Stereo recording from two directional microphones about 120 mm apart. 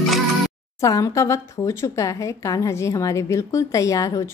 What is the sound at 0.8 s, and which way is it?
Speech, 25° left (ahead or behind).